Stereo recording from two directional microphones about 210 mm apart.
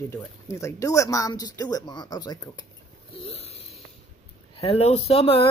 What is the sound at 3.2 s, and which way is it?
Snoring, 30° left (ahead or behind).